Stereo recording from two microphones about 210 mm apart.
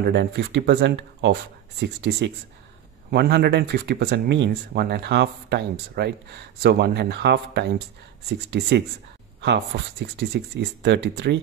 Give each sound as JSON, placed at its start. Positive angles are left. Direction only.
{"t": 0.1, "sound": "speech", "side_deg": -50}